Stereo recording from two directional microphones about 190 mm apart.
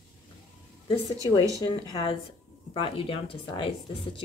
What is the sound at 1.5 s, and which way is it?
Speech, 20° right (ahead or behind).